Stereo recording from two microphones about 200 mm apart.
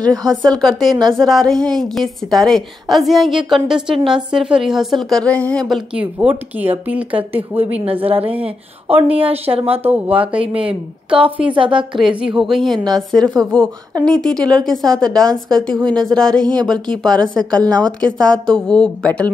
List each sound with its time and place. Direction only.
0.0 s speech: 20° right (ahead or behind)
0.6 s a woman's voice: centre (ahead or behind)
6.1 s speech: 10° right (ahead or behind)
7.8 s speech: 30° right (ahead or behind)
11.1 s a woman's voice: 25° right (ahead or behind)
12.3 s a woman's voice: centre (ahead or behind)
12.7 s speech: 20° right (ahead or behind)
13.4 s a woman's voice: 5° left (ahead or behind)
16.4 s speech: 20° right (ahead or behind)
16.8 s a woman's voice: 5° left (ahead or behind)